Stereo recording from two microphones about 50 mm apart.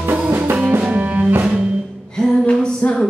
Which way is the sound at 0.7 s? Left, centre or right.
Right.